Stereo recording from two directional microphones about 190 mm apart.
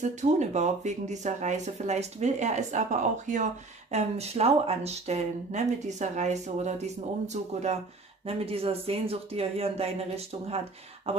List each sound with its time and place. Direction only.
0.0 s speech: 40° right (ahead or behind)
8.3 s speech: 30° right (ahead or behind)
11.1 s a sound: 30° right (ahead or behind)